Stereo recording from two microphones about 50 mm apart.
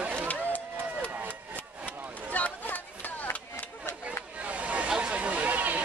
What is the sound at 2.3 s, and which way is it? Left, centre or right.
Chatter, left.